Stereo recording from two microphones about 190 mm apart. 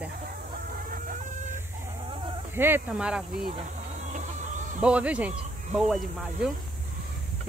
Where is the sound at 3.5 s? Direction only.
40° right (ahead or behind).